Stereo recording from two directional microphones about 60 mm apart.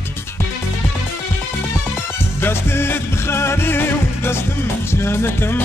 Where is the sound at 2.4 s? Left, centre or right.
Left.